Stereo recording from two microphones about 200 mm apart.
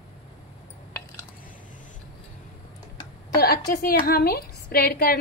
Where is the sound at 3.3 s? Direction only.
50° left (ahead or behind).